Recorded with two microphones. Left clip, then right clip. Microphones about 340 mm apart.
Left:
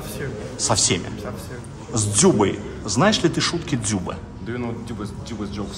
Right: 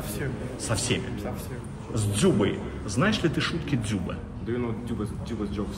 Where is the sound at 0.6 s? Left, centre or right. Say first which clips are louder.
Left 9 dB; centre.